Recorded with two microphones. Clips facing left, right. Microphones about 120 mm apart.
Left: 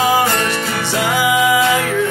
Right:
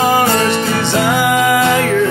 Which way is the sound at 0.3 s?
25° right (ahead or behind).